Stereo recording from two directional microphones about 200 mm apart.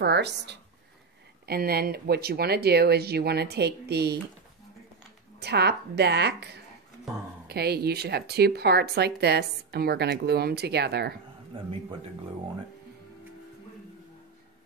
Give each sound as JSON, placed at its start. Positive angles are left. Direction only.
{"t": 0.0, "sound": "a woman's voice", "side_deg": -60}
{"t": 5.4, "sound": "a woman's voice", "side_deg": -55}
{"t": 11.5, "sound": "speech", "side_deg": -25}